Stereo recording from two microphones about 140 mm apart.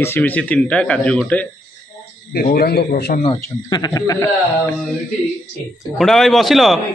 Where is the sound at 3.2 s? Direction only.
35° left (ahead or behind).